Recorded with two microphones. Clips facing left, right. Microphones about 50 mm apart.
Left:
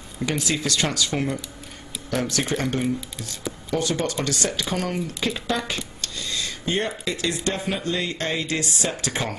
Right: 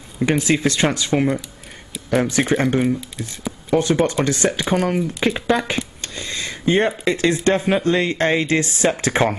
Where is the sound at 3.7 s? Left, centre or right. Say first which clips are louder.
Right 8 dB; right.